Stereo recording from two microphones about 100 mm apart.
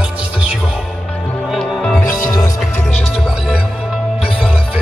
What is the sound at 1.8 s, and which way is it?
Music, 10° left (ahead or behind).